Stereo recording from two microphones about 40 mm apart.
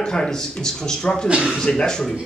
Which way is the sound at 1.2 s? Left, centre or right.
Right.